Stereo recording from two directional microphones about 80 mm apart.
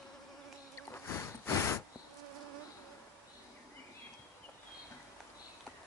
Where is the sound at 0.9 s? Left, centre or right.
Left.